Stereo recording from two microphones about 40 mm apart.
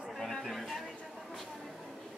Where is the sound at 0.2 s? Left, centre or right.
Centre.